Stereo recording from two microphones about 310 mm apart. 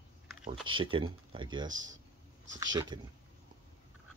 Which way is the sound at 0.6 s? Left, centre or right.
Centre.